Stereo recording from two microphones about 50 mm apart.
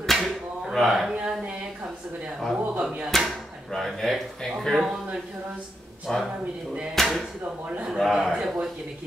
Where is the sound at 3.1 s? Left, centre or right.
Centre.